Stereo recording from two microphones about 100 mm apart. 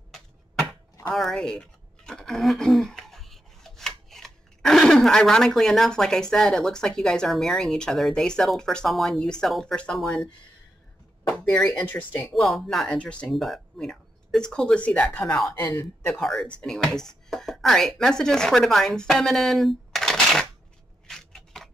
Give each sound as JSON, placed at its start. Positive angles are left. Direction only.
{"t": 1.1, "sound": "speech", "side_deg": 5}
{"t": 12.4, "sound": "speech", "side_deg": 0}
{"t": 13.3, "sound": "speech", "side_deg": 0}
{"t": 15.7, "sound": "speech", "side_deg": 20}
{"t": 16.2, "sound": "speech", "side_deg": 5}
{"t": 21.1, "sound": "scissors", "side_deg": 5}